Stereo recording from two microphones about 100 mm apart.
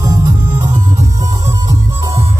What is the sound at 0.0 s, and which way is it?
Music, 35° right (ahead or behind).